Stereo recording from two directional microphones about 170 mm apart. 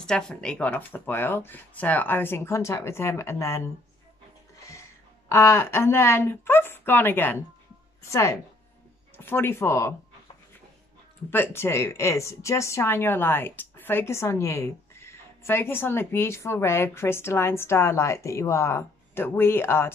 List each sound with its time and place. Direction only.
0.0 s a woman's voice: 5° left (ahead or behind)
4.6 s music: 15° left (ahead or behind)
5.3 s a woman's voice: 15° left (ahead or behind)
11.2 s a woman's voice: 15° left (ahead or behind)